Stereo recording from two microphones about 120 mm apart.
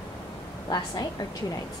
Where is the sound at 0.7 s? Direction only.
30° left (ahead or behind).